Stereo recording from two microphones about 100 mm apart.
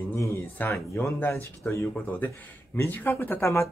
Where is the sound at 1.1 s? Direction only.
20° left (ahead or behind).